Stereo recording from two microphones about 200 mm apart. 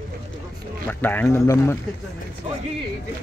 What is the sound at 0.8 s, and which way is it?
Speech, 10° left (ahead or behind).